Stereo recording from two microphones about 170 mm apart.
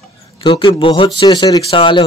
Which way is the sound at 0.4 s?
30° left (ahead or behind).